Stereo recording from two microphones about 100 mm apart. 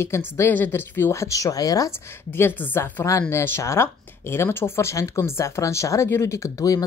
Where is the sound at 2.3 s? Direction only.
20° left (ahead or behind).